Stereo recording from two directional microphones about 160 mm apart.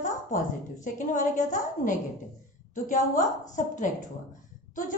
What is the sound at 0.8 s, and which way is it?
Speech, 55° left (ahead or behind).